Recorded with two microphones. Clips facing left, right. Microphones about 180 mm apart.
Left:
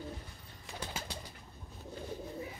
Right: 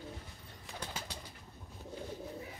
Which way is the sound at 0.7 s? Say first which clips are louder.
Left 2 dB; centre (ahead or behind).